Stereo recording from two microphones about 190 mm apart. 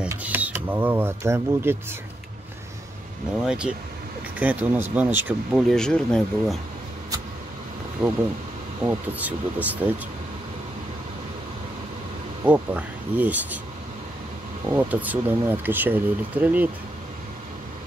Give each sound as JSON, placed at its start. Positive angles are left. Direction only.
{"t": 0.0, "sound": "speech", "side_deg": -10}
{"t": 3.4, "sound": "speech", "side_deg": -5}
{"t": 8.0, "sound": "speech", "side_deg": -20}
{"t": 12.4, "sound": "speech", "side_deg": -10}
{"t": 14.7, "sound": "speech", "side_deg": -10}